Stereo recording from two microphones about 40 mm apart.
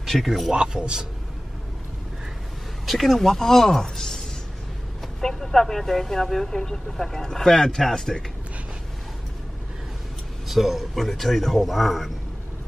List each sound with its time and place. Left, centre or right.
0.0 s speech: centre
0.5 s a man's voice: right
2.9 s speech: centre
5.2 s speech: centre
10.5 s a man's voice: centre